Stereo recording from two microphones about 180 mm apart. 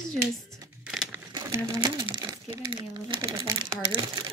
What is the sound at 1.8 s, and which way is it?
Speech, 25° right (ahead or behind).